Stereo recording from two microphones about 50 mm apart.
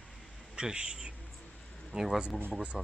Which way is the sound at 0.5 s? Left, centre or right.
Centre.